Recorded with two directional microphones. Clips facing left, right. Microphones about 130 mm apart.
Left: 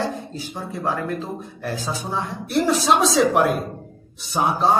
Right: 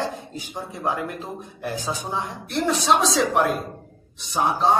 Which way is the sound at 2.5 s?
Centre (ahead or behind).